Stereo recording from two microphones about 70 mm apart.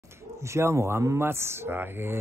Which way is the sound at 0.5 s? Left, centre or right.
Right.